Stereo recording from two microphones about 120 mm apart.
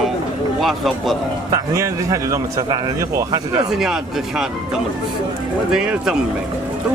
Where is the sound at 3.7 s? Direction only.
5° right (ahead or behind).